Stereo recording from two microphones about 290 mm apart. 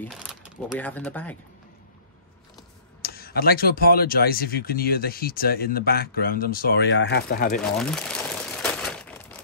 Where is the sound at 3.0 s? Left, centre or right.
Left.